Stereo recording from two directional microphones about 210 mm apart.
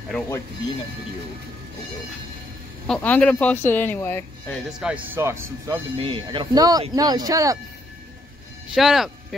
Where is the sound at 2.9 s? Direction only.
5° left (ahead or behind).